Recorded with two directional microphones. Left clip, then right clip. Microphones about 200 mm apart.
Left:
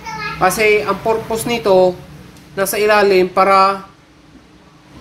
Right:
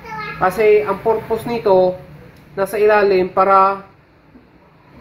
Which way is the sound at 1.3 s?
10° left (ahead or behind).